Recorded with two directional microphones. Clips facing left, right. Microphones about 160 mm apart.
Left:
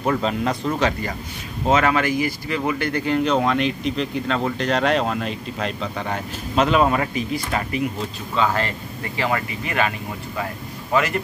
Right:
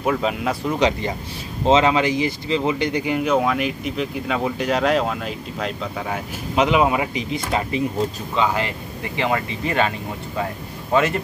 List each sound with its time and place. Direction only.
0.0 s speech: 5° right (ahead or behind)
0.7 s speech: 20° right (ahead or behind)